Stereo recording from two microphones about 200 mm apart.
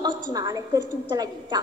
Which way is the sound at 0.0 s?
20° right (ahead or behind).